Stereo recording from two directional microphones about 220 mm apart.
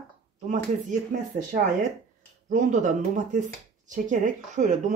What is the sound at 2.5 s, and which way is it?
Speech, 35° right (ahead or behind).